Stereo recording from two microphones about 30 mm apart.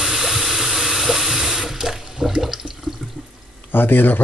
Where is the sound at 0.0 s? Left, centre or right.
Centre.